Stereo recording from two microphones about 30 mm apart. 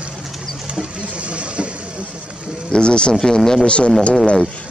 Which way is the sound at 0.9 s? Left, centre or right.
Right.